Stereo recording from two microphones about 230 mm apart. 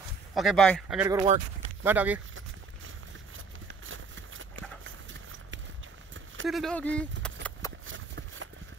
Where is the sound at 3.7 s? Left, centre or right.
Right.